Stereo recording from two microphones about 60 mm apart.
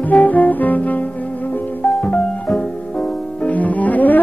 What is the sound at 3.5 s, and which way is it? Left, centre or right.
Music, left.